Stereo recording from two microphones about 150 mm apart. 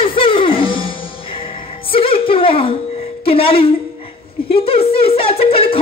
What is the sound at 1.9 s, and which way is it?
Music, 35° left (ahead or behind).